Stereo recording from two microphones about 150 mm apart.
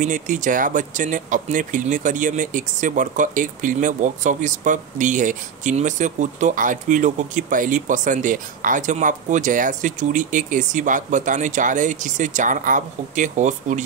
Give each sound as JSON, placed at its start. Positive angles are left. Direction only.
{"t": 0.0, "sound": "speech", "side_deg": -60}